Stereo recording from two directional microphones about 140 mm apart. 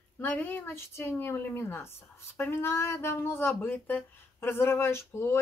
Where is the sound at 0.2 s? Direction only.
15° left (ahead or behind).